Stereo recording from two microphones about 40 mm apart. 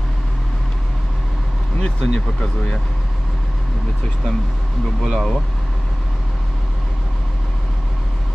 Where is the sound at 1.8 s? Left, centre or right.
Centre.